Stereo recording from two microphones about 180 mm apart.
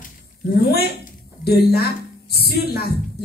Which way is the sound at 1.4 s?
60° left (ahead or behind).